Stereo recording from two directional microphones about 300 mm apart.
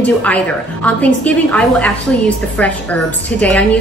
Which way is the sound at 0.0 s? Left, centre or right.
Centre.